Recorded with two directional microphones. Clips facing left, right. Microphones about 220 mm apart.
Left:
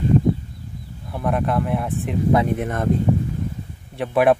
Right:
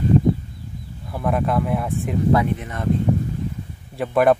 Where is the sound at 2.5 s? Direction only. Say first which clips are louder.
Left 4 dB; 50° left (ahead or behind).